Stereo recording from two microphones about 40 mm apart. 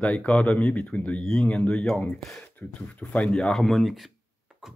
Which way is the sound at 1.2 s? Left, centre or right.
Left.